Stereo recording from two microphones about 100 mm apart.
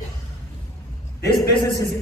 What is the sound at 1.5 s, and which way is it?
Speech, 50° left (ahead or behind).